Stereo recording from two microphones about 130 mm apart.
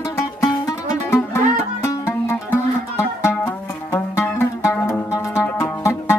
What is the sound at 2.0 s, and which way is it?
Music, 20° left (ahead or behind).